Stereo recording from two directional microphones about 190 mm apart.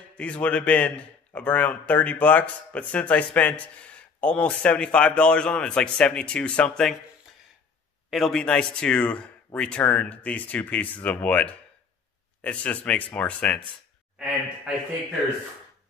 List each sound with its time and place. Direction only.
0.2 s a man's voice: 5° left (ahead or behind)
8.1 s a man's voice: 5° left (ahead or behind)